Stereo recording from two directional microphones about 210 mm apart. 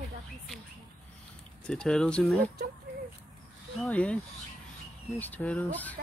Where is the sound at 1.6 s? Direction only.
5° left (ahead or behind).